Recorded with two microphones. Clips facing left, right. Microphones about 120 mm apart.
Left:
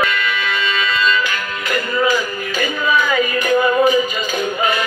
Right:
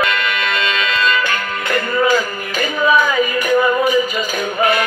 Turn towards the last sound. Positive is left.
turn(degrees=-10)  # may be behind; listen again after turning